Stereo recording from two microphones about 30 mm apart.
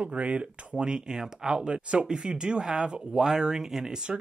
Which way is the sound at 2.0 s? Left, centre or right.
Right.